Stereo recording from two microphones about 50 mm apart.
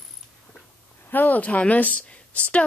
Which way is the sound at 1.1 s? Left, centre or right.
Left.